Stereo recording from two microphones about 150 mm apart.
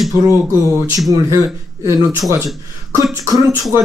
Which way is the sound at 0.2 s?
20° right (ahead or behind).